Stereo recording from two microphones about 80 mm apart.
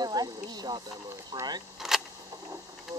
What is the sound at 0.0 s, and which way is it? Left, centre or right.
Speech, right.